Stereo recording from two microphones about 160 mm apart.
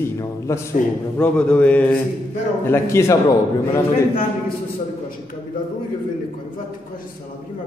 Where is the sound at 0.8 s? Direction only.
55° left (ahead or behind).